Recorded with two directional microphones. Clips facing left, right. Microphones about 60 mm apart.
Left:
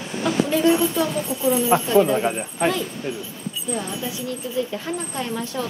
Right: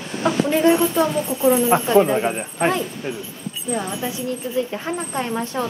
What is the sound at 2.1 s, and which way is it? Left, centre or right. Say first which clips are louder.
Speech: right 1 dB; centre.